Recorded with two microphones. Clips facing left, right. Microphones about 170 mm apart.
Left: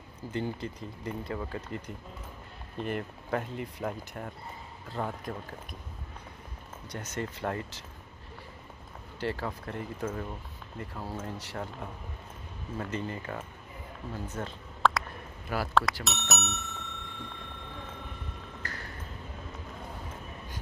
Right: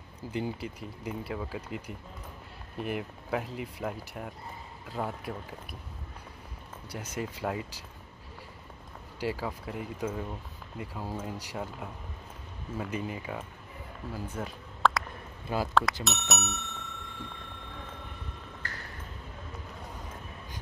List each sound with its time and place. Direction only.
0.3 s speech: 10° right (ahead or behind)
6.9 s speech: 10° right (ahead or behind)
9.2 s speech: 10° right (ahead or behind)
14.8 s a sound: centre (ahead or behind)
15.4 s speech: 20° right (ahead or behind)
15.7 s speech: centre (ahead or behind)